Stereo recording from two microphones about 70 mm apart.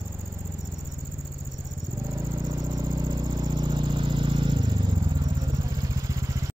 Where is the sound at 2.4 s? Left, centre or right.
Right.